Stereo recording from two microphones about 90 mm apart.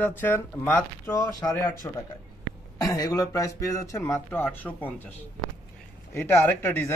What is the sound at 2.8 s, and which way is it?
Speech, 45° left (ahead or behind).